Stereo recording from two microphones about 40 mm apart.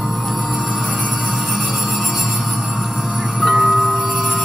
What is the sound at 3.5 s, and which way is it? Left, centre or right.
Music, centre.